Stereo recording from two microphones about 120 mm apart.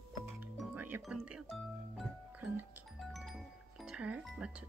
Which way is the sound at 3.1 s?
Centre (ahead or behind).